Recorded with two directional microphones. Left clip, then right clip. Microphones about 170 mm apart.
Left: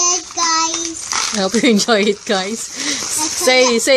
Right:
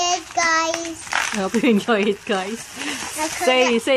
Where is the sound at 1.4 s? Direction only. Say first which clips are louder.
Left 9 dB; 25° left (ahead or behind).